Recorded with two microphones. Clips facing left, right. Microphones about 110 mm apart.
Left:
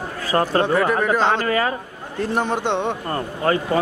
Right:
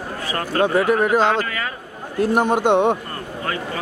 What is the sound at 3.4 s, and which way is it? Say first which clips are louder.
Speech: left 8 dB; 35° left (ahead or behind).